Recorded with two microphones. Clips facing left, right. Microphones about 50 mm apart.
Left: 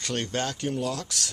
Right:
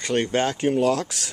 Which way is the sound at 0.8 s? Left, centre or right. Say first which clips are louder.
Right 9 dB; right.